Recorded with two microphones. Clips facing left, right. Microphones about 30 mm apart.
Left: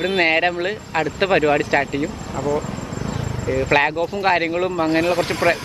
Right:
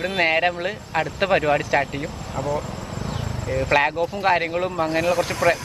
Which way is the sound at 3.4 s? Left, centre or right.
Centre.